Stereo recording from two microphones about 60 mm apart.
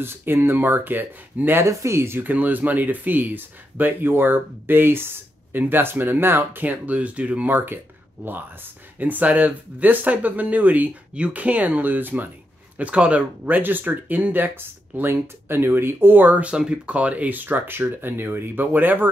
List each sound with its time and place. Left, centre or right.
0.0 s speech: right
1.6 s speech: right
2.1 s speech: right
9.0 s speech: right
12.7 s speech: centre
13.5 s speech: right